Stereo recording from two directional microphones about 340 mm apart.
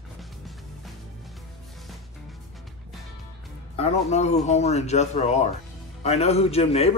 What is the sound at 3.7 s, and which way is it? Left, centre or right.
Speech, centre.